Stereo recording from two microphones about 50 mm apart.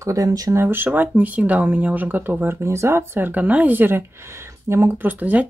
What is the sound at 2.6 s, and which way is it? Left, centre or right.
Speech, right.